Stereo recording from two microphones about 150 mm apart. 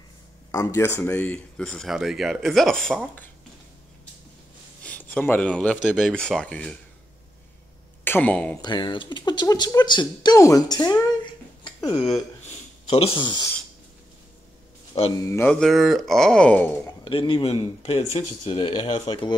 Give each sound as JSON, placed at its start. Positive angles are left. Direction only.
{"t": 0.5, "sound": "speech", "side_deg": 20}
{"t": 4.8, "sound": "speech", "side_deg": 10}
{"t": 8.0, "sound": "speech", "side_deg": 10}
{"t": 8.6, "sound": "a woman's voice", "side_deg": 30}
{"t": 12.9, "sound": "speech", "side_deg": 40}
{"t": 15.1, "sound": "a woman's voice", "side_deg": 20}
{"t": 15.6, "sound": "speech", "side_deg": 0}
{"t": 17.0, "sound": "speech", "side_deg": 35}